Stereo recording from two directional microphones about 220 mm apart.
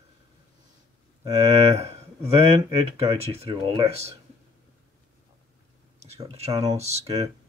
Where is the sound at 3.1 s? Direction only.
25° right (ahead or behind).